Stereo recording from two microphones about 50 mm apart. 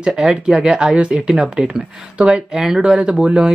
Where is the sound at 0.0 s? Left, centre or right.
Centre.